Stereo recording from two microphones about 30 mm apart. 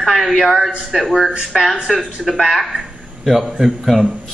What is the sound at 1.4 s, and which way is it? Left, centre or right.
A man's voice, centre.